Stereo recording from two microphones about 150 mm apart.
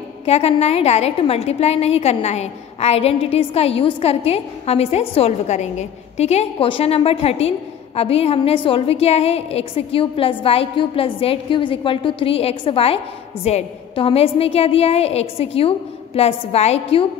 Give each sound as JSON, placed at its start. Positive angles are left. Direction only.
{"t": 0.2, "sound": "a woman's voice", "side_deg": 45}